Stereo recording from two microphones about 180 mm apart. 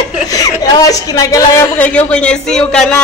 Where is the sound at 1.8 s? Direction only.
5° left (ahead or behind).